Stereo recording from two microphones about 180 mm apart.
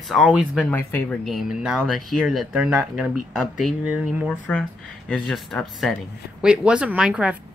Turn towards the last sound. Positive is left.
turn(degrees=-5)  # may be behind; listen again after turning